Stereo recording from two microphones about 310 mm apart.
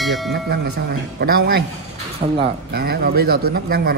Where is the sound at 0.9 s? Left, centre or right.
Right.